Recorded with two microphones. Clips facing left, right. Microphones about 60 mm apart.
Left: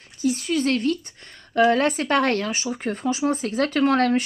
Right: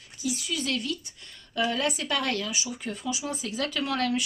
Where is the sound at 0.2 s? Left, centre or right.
Left.